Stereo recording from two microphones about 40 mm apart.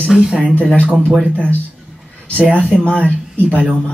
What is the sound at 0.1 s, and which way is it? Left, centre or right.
Speech, centre.